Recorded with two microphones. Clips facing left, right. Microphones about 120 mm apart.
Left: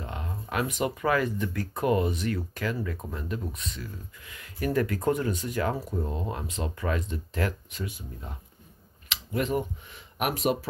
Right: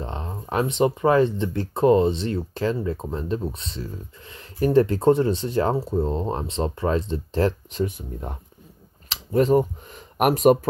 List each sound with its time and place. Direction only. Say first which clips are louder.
0.0 s speech: right 5 dB; 30° right (ahead or behind)
8.3 s speech: right 7 dB; 55° right (ahead or behind)
9.1 s speech: right 10 dB; 35° right (ahead or behind)